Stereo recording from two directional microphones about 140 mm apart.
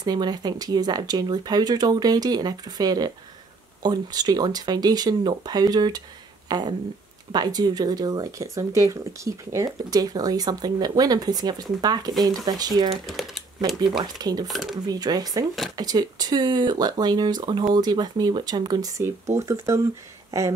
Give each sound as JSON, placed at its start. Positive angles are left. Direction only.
{"t": 0.0, "sound": "speech", "side_deg": -30}
{"t": 6.5, "sound": "a sound", "side_deg": -30}
{"t": 7.3, "sound": "speech", "side_deg": -30}
{"t": 12.9, "sound": "speech", "side_deg": 0}
{"t": 14.1, "sound": "speech", "side_deg": -30}
{"t": 14.5, "sound": "speech", "side_deg": 0}
{"t": 14.9, "sound": "speech", "side_deg": -30}